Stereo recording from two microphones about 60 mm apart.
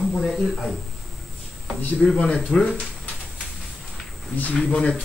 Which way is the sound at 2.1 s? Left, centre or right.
Centre.